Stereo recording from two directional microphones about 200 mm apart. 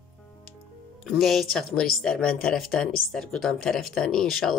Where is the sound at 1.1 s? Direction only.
Centre (ahead or behind).